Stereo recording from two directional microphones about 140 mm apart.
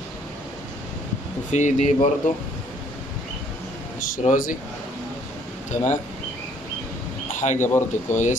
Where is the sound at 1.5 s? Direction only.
60° left (ahead or behind).